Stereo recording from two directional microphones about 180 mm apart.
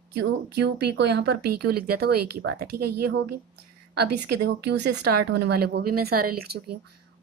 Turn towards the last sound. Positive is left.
turn(degrees=-60)  # may be behind; listen again after turning